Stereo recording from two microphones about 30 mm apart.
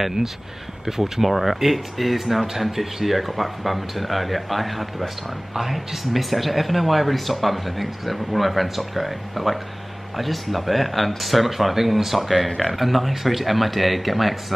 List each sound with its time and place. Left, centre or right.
0.8 s speech: centre
1.2 s speech: centre